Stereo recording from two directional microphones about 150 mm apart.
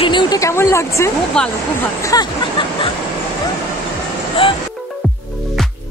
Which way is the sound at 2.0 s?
25° left (ahead or behind).